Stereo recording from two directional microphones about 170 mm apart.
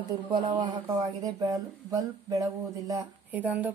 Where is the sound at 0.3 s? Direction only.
25° right (ahead or behind).